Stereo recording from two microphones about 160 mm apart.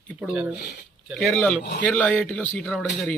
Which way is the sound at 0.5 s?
90° left.